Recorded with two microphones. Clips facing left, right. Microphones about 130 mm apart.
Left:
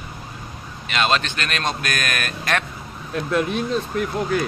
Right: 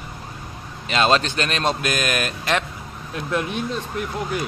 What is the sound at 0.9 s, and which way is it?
Speech, 30° right (ahead or behind).